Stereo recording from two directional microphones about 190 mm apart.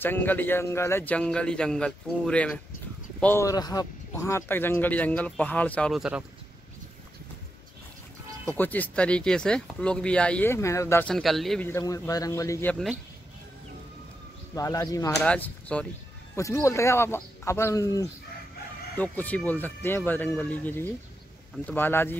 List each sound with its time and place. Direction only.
0.0 s speech: 10° left (ahead or behind)
8.5 s speech: 10° left (ahead or behind)
14.5 s speech: 20° left (ahead or behind)
15.2 s speech: 5° left (ahead or behind)